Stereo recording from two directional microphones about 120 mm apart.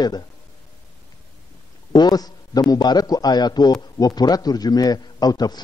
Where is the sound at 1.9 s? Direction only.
35° left (ahead or behind).